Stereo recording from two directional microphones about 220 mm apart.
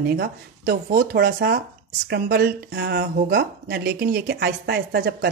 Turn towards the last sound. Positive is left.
turn(degrees=-45)  # may be behind; listen again after turning